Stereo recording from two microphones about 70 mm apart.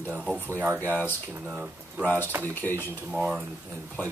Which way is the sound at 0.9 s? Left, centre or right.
Right.